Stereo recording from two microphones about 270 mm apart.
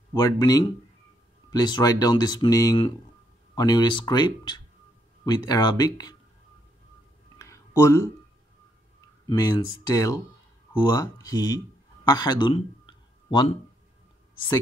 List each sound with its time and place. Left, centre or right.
0.1 s speech: centre
7.3 s a sound: centre
9.3 s speech: centre